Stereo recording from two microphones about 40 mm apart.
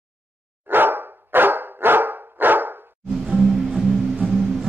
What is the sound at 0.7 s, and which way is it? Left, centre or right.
Dog, right.